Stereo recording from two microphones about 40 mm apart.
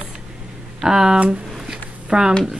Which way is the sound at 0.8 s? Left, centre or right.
Centre.